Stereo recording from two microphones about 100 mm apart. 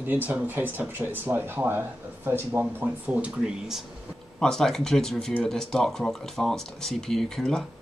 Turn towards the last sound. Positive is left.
turn(degrees=5)  # may be behind; listen again after turning